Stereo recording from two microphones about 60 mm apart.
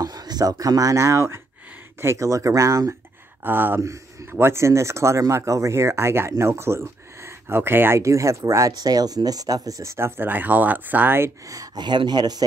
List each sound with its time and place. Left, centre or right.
0.0 s speech: right
3.4 s speech: right
3.8 s a man's voice: right
4.3 s speech: right
8.0 s speech: right
9.9 s speech: right
11.4 s speech: right